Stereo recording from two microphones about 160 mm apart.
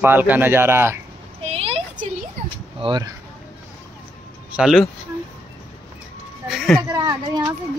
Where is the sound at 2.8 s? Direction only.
25° right (ahead or behind).